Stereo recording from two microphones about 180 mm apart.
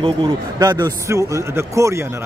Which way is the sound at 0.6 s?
20° right (ahead or behind).